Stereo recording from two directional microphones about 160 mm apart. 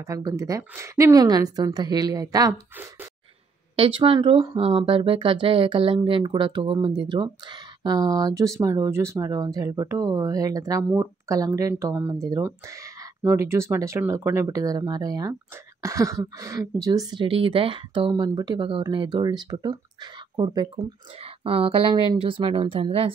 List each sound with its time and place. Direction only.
0.0 s speech: 20° right (ahead or behind)
3.7 s speech: 35° right (ahead or behind)